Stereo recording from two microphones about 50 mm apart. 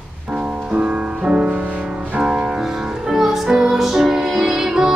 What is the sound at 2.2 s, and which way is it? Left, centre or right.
Music, centre.